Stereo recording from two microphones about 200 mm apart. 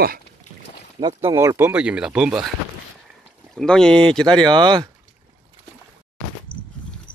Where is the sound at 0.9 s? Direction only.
20° right (ahead or behind); by 2.5 s 5° right (ahead or behind).